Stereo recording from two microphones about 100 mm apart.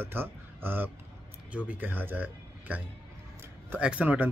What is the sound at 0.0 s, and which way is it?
A man's voice, 20° right (ahead or behind).